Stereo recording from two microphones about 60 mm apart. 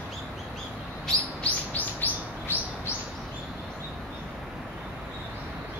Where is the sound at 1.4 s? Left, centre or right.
Left.